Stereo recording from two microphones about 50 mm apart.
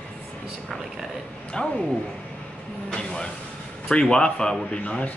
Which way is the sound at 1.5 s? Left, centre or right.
Centre.